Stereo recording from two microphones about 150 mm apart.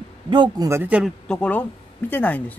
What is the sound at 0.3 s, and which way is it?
Speech, 30° right (ahead or behind).